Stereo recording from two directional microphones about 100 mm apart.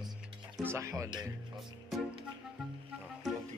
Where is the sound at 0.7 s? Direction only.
30° right (ahead or behind).